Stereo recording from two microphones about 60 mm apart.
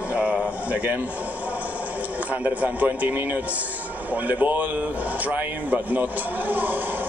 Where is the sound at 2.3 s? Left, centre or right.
Right.